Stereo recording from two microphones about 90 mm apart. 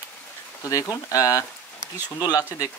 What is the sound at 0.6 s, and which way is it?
Speech, 40° left (ahead or behind).